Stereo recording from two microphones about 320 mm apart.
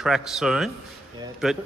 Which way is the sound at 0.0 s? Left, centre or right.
Centre.